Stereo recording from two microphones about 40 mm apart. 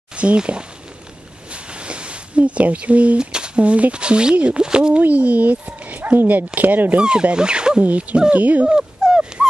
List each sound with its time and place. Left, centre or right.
0.1 s speech: right
1.5 s a sound: right
3.2 s speech: right
4.9 s speech: right
7.0 s speech: right
7.8 s speech: right
8.7 s dog: centre